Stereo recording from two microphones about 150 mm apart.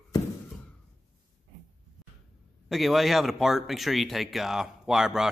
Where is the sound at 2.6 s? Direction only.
Centre (ahead or behind).